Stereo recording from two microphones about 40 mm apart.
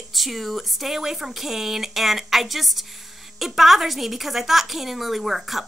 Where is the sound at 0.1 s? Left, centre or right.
Centre.